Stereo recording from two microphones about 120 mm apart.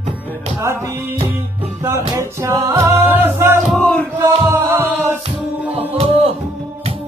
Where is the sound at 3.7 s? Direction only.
10° left (ahead or behind).